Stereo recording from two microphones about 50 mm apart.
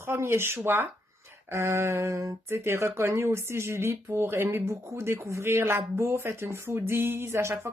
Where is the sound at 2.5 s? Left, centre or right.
Right.